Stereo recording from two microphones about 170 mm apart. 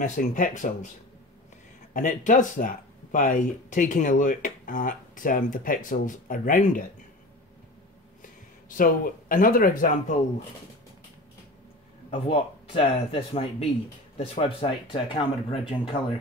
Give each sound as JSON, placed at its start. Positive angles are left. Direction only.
{"t": 0.0, "sound": "speech", "side_deg": 50}
{"t": 2.0, "sound": "speech", "side_deg": 50}
{"t": 8.2, "sound": "speech", "side_deg": 55}
{"t": 12.1, "sound": "speech", "side_deg": 35}